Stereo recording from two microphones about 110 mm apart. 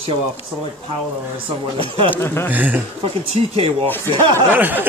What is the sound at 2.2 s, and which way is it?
Speech, 20° left (ahead or behind).